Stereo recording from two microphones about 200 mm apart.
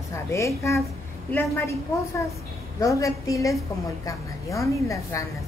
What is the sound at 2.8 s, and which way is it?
A woman's voice, 15° left (ahead or behind).